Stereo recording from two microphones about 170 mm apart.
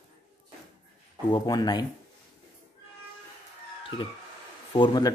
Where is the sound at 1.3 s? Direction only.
25° left (ahead or behind).